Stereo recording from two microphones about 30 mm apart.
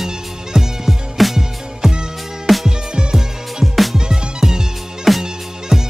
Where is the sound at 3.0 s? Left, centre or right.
Right.